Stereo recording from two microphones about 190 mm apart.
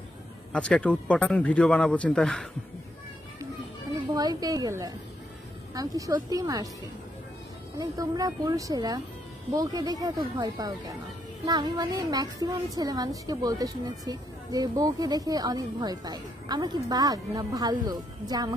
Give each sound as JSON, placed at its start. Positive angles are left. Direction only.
{"t": 0.5, "sound": "a man's voice", "side_deg": 5}
{"t": 4.1, "sound": "speech", "side_deg": -20}
{"t": 7.7, "sound": "speech", "side_deg": -20}